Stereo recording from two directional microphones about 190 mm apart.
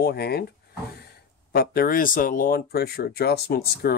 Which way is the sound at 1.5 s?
55° left (ahead or behind).